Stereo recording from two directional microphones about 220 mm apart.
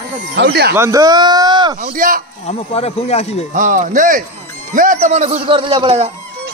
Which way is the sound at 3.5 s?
35° right (ahead or behind).